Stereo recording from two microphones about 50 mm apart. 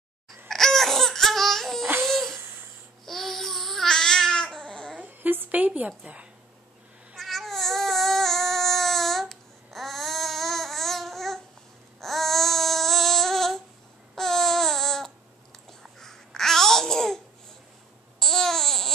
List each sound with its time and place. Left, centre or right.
0.5 s laughter: centre
2.0 s a sound: centre
3.1 s babbling: centre
5.0 s a sound: right
5.9 s a woman's voice: right
7.2 s baby cry: centre
12.0 s babbling: centre
18.2 s babbling: centre